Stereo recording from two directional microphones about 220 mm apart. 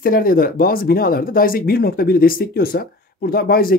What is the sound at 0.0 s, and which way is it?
Speech, 40° left (ahead or behind).